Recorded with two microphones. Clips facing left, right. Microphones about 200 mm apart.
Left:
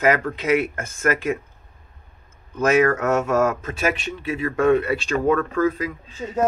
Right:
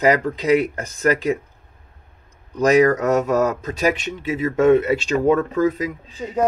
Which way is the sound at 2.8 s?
15° right (ahead or behind).